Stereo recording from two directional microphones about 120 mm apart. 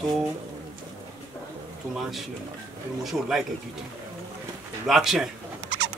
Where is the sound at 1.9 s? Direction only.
Centre (ahead or behind).